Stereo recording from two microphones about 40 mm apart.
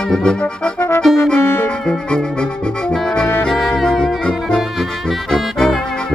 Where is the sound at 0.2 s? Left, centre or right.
Left.